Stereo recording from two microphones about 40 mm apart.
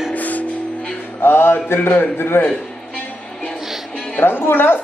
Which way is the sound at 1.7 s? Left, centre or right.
Left.